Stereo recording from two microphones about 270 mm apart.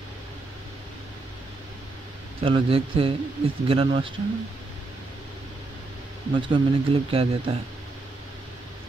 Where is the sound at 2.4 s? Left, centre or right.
Centre.